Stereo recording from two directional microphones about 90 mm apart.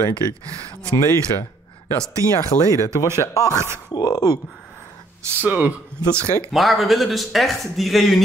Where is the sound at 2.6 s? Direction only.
35° left (ahead or behind).